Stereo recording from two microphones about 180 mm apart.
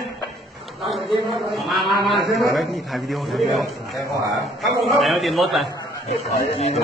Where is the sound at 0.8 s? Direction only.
Centre (ahead or behind).